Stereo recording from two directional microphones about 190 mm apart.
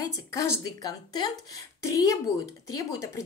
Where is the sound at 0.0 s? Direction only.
15° left (ahead or behind).